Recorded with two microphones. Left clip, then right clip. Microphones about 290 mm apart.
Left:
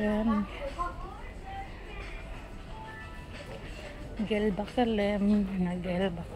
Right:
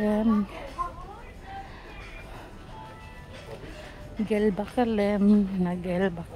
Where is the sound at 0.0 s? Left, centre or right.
Centre.